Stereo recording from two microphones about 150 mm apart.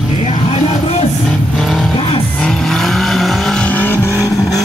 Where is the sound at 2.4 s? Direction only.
5° left (ahead or behind).